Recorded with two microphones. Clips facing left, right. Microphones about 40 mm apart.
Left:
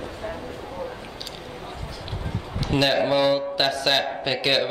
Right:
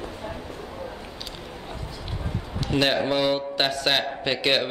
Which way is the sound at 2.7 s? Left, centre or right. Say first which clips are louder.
Left 2 dB; centre.